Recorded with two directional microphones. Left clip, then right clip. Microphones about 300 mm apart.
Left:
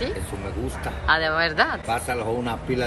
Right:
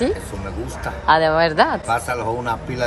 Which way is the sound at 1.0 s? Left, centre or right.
Centre.